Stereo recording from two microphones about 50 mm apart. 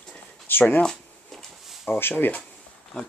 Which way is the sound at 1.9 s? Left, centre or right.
Left.